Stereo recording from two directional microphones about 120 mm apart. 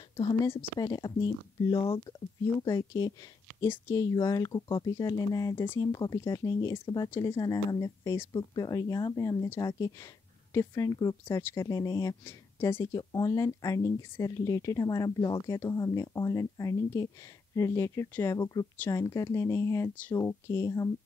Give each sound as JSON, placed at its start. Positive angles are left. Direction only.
{"t": 0.7, "sound": "speech", "side_deg": 35}
{"t": 1.7, "sound": "speech", "side_deg": 50}
{"t": 2.6, "sound": "speech", "side_deg": 30}
{"t": 12.3, "sound": "speech", "side_deg": 20}